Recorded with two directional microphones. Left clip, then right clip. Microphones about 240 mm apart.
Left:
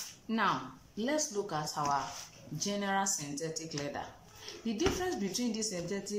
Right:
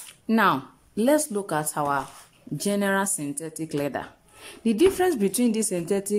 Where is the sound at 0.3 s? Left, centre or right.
Right.